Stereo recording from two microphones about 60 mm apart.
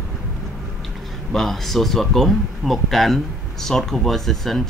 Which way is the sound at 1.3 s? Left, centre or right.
Centre.